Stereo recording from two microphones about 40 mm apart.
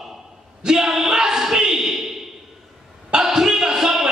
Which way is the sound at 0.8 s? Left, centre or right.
Centre.